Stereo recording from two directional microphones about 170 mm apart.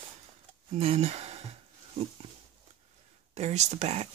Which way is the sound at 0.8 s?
40° right (ahead or behind).